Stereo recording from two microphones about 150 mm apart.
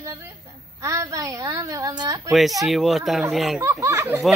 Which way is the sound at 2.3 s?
Centre (ahead or behind).